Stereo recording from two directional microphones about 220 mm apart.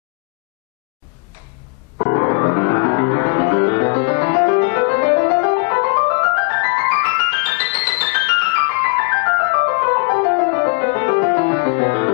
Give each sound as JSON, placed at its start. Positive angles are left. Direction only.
{"t": 2.0, "sound": "music", "side_deg": 20}